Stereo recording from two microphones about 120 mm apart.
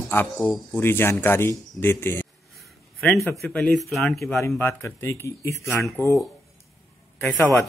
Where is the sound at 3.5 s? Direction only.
10° left (ahead or behind).